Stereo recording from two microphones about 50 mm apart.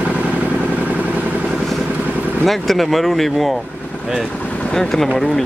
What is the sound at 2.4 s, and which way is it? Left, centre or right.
A man's voice, centre.